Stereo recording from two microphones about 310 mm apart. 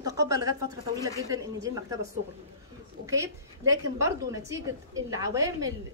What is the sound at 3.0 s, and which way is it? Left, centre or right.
A woman's voice, centre.